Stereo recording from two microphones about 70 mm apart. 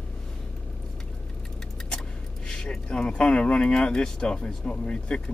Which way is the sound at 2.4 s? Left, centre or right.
Centre.